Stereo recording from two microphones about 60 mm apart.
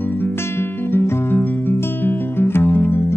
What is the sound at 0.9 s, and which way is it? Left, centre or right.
Music, left.